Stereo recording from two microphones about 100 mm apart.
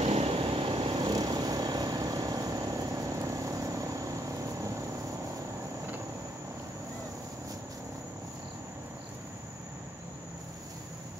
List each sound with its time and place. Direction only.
0.0 s vehicle: 90° right; by 0.9 s 60° right (ahead or behind)
0.9 s vehicle: 45° right (ahead or behind)